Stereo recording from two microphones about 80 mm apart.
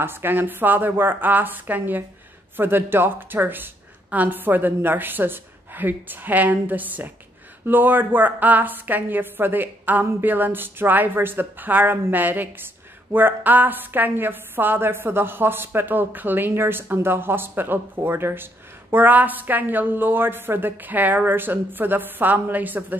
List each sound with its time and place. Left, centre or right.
0.0 s a woman's voice: right